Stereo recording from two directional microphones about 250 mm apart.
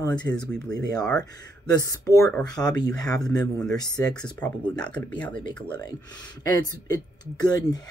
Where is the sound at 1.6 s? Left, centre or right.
Centre.